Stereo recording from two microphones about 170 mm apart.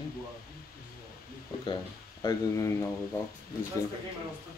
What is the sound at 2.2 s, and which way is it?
Speech, 20° left (ahead or behind).